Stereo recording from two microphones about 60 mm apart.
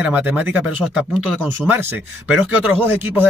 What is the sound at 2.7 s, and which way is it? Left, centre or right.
Speech, right.